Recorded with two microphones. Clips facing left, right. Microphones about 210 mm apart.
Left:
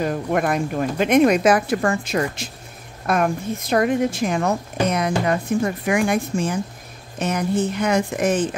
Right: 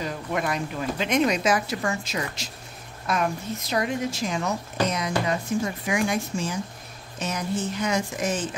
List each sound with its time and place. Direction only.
0.0 s a woman's voice: 55° left (ahead or behind)